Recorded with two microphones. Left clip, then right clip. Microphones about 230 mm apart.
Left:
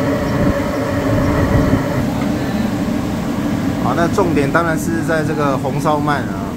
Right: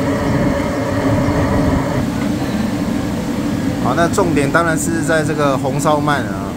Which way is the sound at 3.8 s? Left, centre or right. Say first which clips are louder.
Right 1 dB; centre.